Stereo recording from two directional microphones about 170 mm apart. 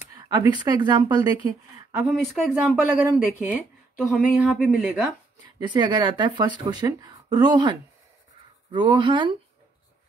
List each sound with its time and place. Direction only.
0.0 s speech: 20° right (ahead or behind)
2.0 s a man's voice: 5° right (ahead or behind)
5.4 s speech: 25° right (ahead or behind)
8.7 s speech: 25° right (ahead or behind)